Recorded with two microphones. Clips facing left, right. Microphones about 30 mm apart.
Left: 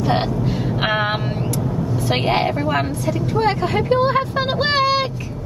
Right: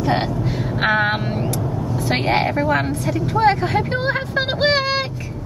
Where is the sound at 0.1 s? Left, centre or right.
Centre.